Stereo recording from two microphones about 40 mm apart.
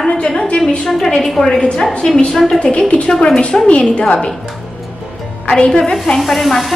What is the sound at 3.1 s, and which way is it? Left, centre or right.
Speech, centre.